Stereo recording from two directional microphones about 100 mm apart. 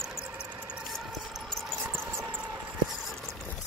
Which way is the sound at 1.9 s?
20° right (ahead or behind).